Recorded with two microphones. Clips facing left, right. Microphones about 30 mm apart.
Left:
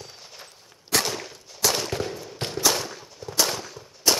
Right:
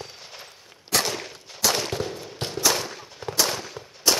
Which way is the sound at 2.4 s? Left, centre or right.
Centre.